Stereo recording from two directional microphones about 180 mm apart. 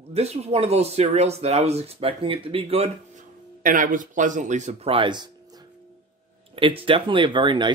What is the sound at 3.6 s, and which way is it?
Speech, 50° right (ahead or behind).